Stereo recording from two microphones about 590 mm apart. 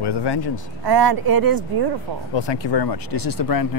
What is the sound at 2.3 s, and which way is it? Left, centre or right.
Speech, left.